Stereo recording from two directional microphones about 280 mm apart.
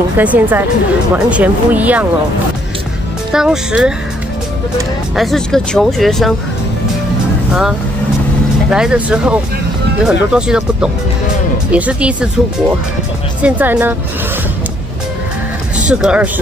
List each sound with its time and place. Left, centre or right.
0.2 s speech: centre
3.3 s speech: centre
5.1 s speech: centre
8.6 s speech: centre
15.8 s speech: centre